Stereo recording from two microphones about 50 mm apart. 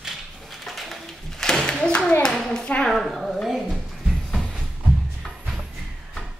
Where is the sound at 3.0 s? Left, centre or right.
Centre.